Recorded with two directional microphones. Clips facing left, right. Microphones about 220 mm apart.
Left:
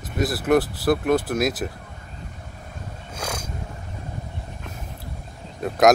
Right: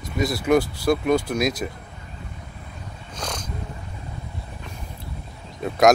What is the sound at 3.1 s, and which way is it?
Wild animals, 10° left (ahead or behind).